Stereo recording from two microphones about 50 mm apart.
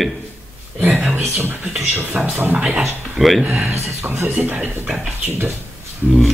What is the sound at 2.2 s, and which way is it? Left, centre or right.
Speech, centre.